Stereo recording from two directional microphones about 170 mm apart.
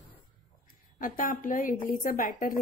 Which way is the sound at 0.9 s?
55° left (ahead or behind).